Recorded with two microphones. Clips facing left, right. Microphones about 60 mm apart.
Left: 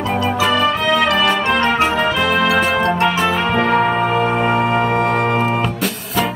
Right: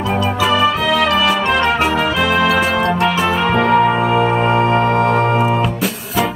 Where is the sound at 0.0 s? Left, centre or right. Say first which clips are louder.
Even; centre.